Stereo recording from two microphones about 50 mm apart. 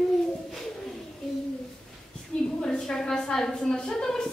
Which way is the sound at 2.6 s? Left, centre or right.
Centre.